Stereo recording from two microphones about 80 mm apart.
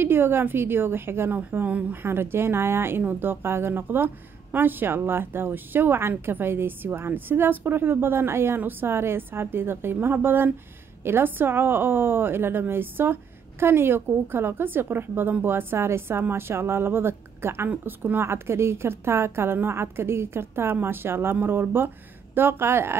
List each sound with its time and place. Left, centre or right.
0.0 s a woman's voice: right
2.0 s a woman's voice: right